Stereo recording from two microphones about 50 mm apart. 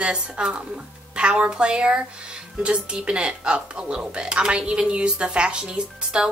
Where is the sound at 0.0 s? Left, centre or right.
Centre.